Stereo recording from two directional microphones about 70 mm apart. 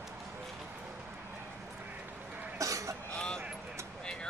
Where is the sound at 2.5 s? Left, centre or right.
Right.